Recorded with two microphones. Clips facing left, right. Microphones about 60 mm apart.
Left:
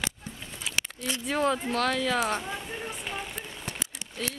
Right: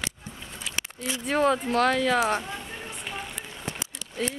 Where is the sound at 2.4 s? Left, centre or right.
Centre.